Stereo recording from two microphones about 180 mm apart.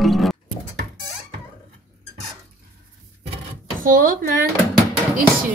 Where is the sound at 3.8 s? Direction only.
50° right (ahead or behind).